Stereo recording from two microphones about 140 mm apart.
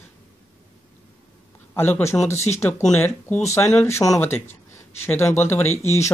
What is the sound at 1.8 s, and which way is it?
Speech, 15° left (ahead or behind).